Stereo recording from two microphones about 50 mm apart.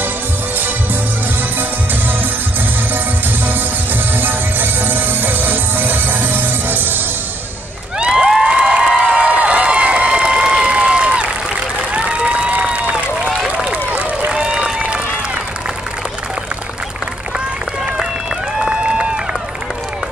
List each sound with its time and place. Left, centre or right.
3.4 s music: right
8.0 s cheering: centre
8.9 s a sound: right
11.9 s run: right
13.8 s a sound: right
14.3 s applause: centre
18.6 s run: centre